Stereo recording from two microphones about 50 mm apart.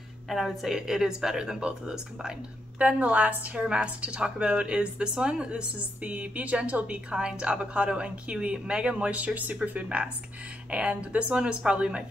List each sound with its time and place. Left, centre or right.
0.3 s a woman's voice: centre
2.8 s a woman's voice: right